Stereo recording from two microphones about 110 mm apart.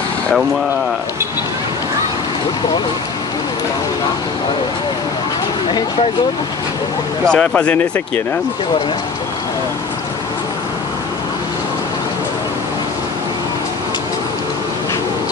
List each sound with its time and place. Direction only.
7.2 s speech: 10° left (ahead or behind)